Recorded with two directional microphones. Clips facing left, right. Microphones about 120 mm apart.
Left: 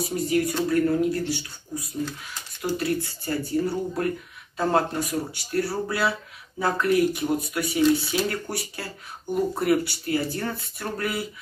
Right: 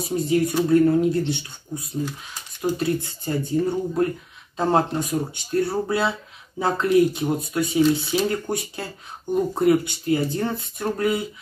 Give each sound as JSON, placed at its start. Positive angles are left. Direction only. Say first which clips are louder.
{"t": 0.0, "sound": "speech", "louder": "right 3 dB", "side_deg": -25}